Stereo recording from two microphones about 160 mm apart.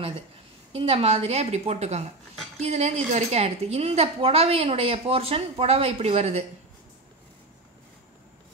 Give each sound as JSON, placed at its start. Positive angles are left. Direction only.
{"t": 0.7, "sound": "a woman's voice", "side_deg": -40}